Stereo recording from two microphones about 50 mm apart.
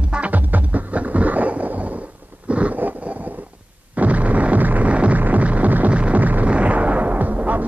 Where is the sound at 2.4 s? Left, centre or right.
Right.